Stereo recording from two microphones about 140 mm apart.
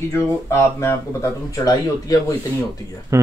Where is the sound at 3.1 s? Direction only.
25° right (ahead or behind).